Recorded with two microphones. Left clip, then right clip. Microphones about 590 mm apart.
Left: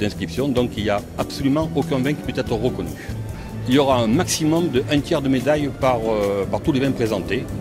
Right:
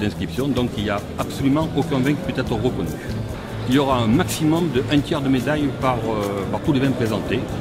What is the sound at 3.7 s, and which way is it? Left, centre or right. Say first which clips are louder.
Speech: left 2 dB; left.